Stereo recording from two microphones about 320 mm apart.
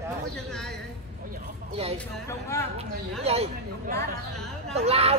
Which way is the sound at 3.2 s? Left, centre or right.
Centre.